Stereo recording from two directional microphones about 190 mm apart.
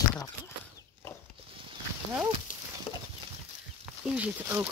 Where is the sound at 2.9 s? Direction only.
30° left (ahead or behind).